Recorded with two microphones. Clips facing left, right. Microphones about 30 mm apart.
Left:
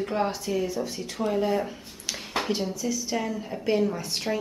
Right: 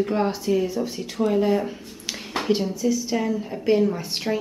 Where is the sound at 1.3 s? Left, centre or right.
Centre.